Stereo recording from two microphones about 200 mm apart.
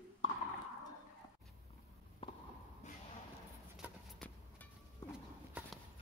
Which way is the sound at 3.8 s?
10° right (ahead or behind).